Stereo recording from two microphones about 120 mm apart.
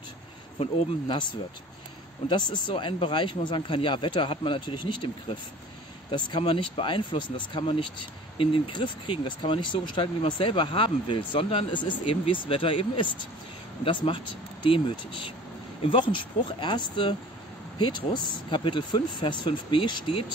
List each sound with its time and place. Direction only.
0.6 s speech: 45° left (ahead or behind)
2.2 s speech: 40° left (ahead or behind)